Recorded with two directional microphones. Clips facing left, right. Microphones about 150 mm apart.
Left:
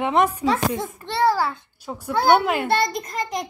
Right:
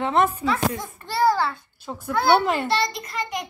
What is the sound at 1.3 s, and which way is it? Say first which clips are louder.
A child's voice: left 1 dB; 15° left (ahead or behind).